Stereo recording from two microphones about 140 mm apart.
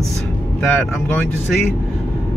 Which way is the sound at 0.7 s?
15° left (ahead or behind).